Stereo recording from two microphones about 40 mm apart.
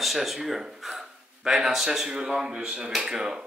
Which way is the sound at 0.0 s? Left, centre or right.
Centre.